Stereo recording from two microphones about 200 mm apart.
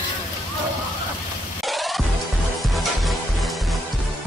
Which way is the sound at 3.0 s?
Centre (ahead or behind).